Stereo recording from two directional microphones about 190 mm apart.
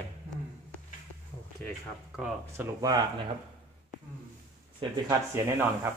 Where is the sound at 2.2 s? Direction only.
5° right (ahead or behind).